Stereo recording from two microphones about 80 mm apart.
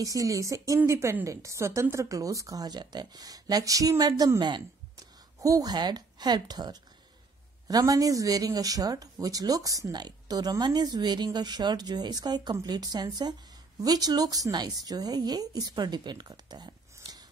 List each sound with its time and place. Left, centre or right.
0.0 s speech: right
4.4 s speech: right
5.4 s a woman's voice: right